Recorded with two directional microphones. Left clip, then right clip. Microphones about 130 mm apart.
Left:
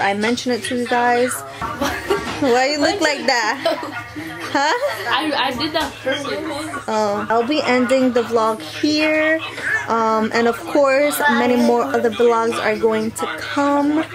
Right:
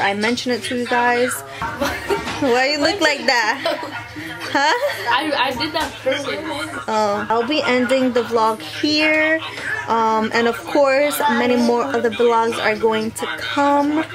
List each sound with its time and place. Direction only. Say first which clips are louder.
0.0 s a woman's voice: even; centre (ahead or behind)